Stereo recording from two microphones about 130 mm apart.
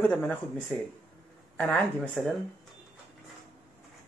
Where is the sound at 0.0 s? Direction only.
10° left (ahead or behind).